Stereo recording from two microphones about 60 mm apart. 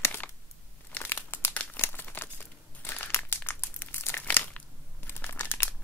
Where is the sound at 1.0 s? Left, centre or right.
Left.